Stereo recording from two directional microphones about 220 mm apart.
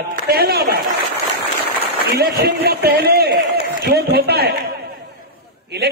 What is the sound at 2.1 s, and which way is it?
A man's voice, 45° right (ahead or behind).